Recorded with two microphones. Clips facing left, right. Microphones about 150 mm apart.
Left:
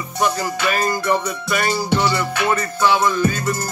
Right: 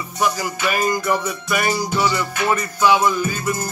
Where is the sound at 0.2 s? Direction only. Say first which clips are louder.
Left 1 dB; 10° right (ahead or behind).